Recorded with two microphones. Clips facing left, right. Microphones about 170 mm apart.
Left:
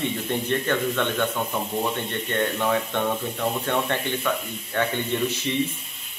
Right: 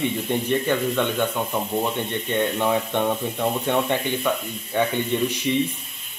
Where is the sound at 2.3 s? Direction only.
15° right (ahead or behind).